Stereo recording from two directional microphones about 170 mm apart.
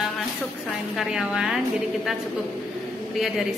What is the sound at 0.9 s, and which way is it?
Speech, 5° right (ahead or behind).